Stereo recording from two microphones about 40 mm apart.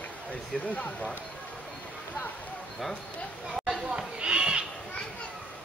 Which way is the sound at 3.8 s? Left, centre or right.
Right.